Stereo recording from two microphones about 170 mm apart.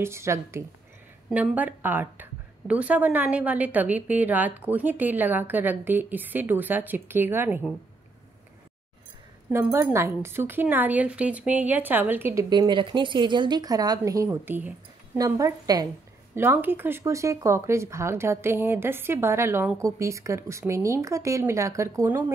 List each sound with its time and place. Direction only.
0.0 s speech: 15° right (ahead or behind)
9.5 s speech: 15° right (ahead or behind)
12.4 s a woman's voice: 25° right (ahead or behind)